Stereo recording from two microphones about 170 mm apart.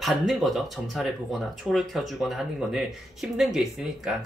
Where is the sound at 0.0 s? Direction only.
Centre (ahead or behind).